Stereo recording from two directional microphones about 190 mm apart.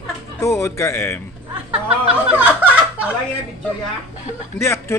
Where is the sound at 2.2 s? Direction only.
5° right (ahead or behind).